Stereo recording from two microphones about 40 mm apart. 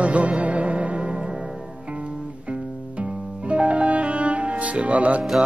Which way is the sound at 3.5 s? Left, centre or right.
Right.